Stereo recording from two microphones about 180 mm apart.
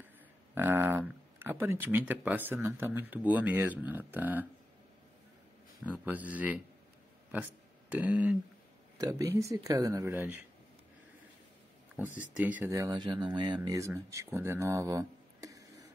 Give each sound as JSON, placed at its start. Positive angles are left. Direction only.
{"t": 0.6, "sound": "speech", "side_deg": -10}
{"t": 5.9, "sound": "speech", "side_deg": -10}
{"t": 7.9, "sound": "speech", "side_deg": -10}
{"t": 12.4, "sound": "speech", "side_deg": -10}